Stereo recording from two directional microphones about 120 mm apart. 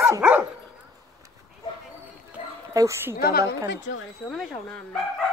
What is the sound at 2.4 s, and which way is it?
Dog, 90° left.